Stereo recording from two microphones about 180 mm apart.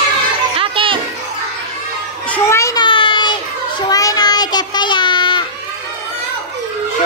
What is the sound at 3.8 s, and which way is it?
Child singing, 20° left (ahead or behind).